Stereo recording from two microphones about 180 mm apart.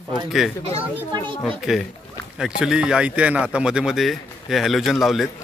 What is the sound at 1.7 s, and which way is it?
Speech, 5° right (ahead or behind).